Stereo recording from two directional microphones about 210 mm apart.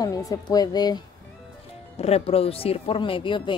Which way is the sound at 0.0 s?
15° left (ahead or behind).